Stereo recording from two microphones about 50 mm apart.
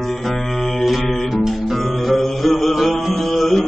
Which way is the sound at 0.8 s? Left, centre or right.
Centre.